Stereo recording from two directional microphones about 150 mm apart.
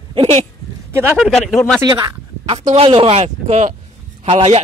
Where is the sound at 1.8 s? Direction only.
25° right (ahead or behind).